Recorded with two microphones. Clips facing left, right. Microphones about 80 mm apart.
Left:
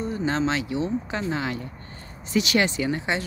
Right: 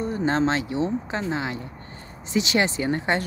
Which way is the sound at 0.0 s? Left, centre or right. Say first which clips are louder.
Right 2 dB; right.